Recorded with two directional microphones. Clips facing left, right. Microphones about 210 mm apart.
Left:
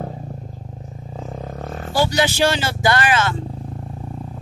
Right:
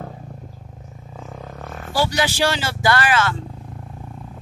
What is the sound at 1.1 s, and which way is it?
Vehicle, 35° left (ahead or behind).